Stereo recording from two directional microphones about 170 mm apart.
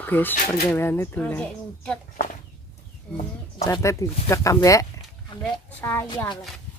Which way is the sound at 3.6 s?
20° left (ahead or behind).